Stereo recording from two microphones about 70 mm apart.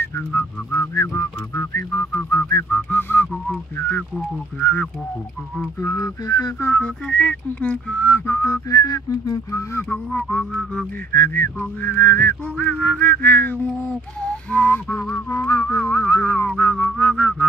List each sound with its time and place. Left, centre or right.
0.0 s speech: left
2.7 s music: left
4.6 s music: left
5.8 s speech: left
6.7 s music: centre
8.6 s whistling: left
9.8 s music: centre
16.7 s music: centre